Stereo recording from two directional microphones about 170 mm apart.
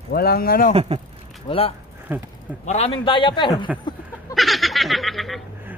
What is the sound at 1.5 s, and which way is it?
Speech, 30° left (ahead or behind).